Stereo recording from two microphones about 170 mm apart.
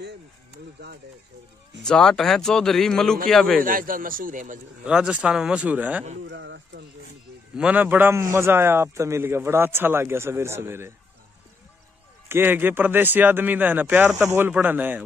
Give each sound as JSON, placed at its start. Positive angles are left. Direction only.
{"t": 1.8, "sound": "a man's voice", "side_deg": 5}
{"t": 3.6, "sound": "speech", "side_deg": -55}
{"t": 4.8, "sound": "a man's voice", "side_deg": -5}
{"t": 6.2, "sound": "speech", "side_deg": -90}
{"t": 7.5, "sound": "speech", "side_deg": -5}
{"t": 12.3, "sound": "speech", "side_deg": -10}